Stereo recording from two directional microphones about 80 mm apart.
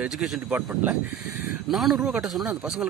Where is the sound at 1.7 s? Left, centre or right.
Centre.